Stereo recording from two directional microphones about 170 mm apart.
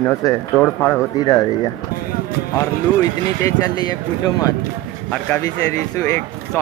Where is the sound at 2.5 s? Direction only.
20° left (ahead or behind).